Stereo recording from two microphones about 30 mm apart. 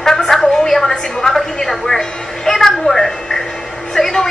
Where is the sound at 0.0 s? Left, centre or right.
Centre.